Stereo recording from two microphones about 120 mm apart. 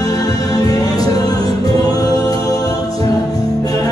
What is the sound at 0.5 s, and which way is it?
Music, 30° left (ahead or behind).